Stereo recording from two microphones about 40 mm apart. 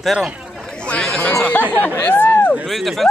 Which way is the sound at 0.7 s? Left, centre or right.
Left.